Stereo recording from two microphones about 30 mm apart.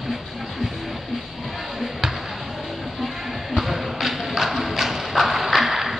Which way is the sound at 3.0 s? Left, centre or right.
Centre.